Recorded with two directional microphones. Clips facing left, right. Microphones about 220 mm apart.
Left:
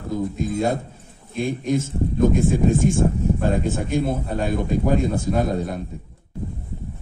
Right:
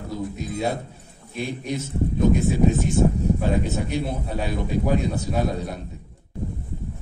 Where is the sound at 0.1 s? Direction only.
50° left (ahead or behind).